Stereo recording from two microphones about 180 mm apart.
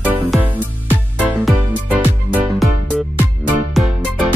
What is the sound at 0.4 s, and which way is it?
Music, 10° right (ahead or behind).